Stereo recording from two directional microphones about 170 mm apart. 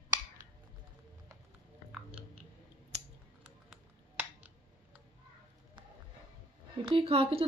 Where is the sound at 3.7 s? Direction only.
10° right (ahead or behind).